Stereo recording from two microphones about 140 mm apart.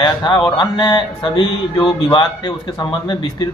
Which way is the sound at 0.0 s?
35° left (ahead or behind).